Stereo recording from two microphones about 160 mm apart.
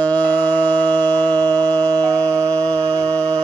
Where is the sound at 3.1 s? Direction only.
10° left (ahead or behind).